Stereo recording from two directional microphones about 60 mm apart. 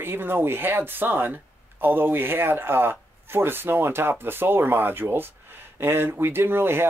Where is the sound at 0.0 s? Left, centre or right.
Right.